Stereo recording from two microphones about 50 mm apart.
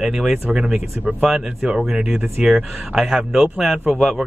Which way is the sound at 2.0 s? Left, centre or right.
Right.